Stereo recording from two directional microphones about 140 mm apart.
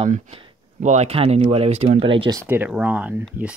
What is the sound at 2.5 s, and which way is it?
Speech, 10° right (ahead or behind).